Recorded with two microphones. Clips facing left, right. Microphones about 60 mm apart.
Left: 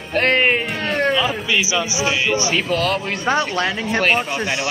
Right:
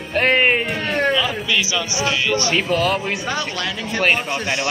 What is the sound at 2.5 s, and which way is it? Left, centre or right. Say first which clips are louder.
Speech: right 1 dB; centre.